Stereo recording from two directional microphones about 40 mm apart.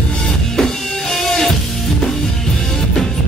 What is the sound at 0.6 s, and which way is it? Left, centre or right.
Music, centre.